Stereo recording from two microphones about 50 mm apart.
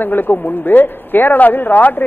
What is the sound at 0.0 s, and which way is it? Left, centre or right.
Speech, left.